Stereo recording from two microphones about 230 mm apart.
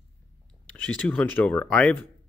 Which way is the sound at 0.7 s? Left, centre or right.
Centre.